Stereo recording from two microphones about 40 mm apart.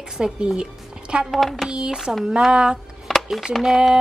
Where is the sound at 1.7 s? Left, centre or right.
Centre.